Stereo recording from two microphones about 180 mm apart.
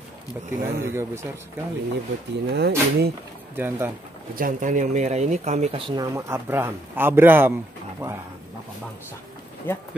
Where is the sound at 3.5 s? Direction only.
10° right (ahead or behind).